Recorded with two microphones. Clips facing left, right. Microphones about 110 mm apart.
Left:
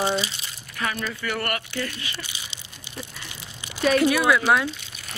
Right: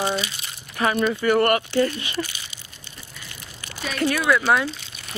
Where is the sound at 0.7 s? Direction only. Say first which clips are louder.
Right 8 dB; 30° right (ahead or behind).